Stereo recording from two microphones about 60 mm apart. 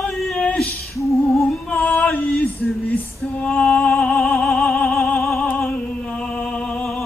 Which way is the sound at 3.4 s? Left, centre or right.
Left.